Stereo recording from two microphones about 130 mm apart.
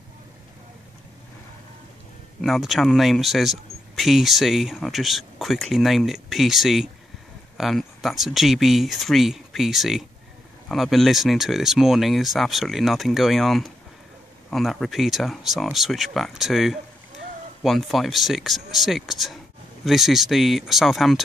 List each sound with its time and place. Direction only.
2.4 s speech: centre (ahead or behind)